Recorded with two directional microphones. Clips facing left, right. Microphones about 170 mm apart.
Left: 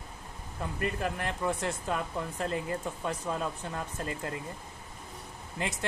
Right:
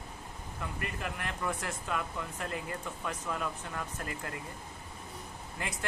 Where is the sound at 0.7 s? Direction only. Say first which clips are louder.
Left 8 dB; 30° left (ahead or behind).